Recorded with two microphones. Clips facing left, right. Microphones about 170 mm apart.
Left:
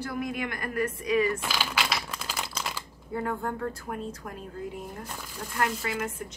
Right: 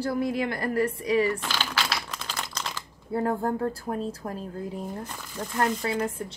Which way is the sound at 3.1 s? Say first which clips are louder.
Right 5 dB; 35° right (ahead or behind).